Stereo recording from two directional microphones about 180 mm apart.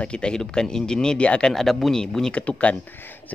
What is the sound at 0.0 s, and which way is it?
Speech, 5° left (ahead or behind).